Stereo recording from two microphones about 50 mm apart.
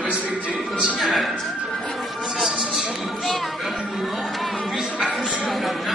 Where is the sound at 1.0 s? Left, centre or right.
Centre.